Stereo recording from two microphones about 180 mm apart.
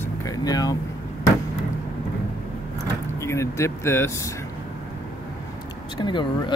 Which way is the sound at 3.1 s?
15° left (ahead or behind).